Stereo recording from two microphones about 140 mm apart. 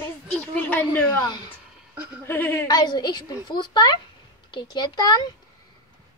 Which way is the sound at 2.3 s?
15° left (ahead or behind).